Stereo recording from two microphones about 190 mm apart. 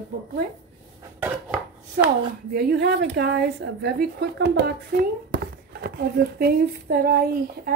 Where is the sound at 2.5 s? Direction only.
55° right (ahead or behind).